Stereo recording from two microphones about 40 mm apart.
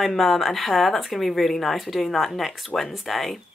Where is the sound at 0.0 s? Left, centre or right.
Centre.